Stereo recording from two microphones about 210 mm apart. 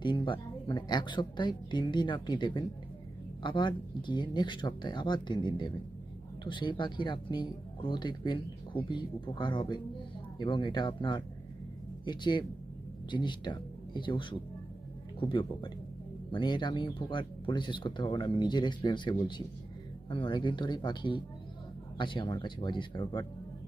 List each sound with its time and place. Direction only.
0.0 s speech: 20° left (ahead or behind)